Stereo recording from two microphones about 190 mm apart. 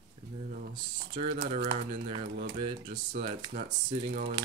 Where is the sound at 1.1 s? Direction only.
30° right (ahead or behind).